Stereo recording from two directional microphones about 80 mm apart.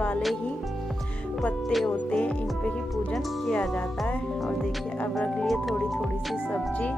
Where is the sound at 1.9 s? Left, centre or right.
Centre.